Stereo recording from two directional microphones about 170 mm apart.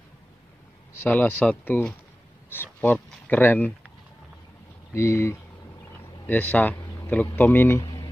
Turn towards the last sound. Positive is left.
turn(degrees=15)  # may be behind; listen again after turning